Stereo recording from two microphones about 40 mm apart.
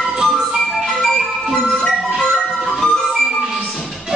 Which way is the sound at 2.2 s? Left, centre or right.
Centre.